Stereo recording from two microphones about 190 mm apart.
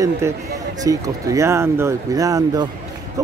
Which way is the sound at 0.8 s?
15° right (ahead or behind).